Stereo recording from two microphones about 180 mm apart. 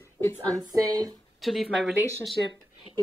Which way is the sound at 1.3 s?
Centre (ahead or behind).